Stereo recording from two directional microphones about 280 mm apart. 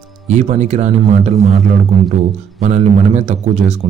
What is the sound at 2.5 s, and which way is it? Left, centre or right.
A man's voice, right.